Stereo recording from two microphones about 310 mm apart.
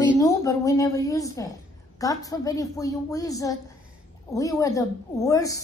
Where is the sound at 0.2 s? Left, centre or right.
Centre.